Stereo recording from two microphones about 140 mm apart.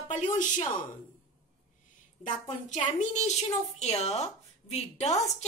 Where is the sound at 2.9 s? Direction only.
55° left (ahead or behind).